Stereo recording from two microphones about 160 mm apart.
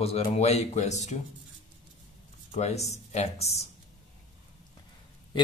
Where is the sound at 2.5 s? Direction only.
45° left (ahead or behind).